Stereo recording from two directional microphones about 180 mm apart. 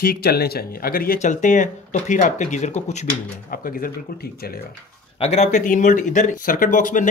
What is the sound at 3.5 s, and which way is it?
Speech, 50° left (ahead or behind).